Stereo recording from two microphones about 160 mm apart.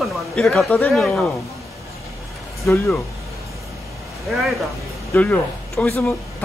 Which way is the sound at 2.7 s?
10° left (ahead or behind).